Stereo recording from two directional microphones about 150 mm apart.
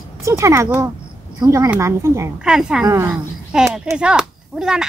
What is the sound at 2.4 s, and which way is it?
Speech, 5° right (ahead or behind).